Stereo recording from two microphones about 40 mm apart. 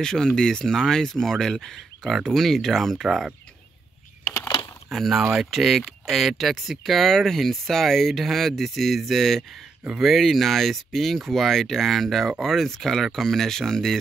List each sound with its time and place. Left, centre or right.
0.0 s speech: centre
4.9 s speech: centre